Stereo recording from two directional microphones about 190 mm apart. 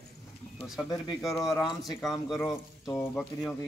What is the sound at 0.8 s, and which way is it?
Speech, 15° left (ahead or behind).